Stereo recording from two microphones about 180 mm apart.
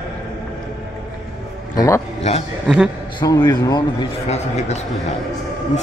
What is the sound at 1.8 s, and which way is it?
Speech, 15° left (ahead or behind).